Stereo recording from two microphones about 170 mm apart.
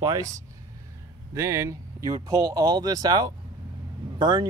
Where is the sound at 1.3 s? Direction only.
15° right (ahead or behind).